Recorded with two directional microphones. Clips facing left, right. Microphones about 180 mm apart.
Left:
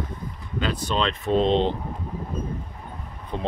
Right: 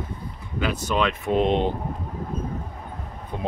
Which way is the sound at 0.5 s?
10° right (ahead or behind).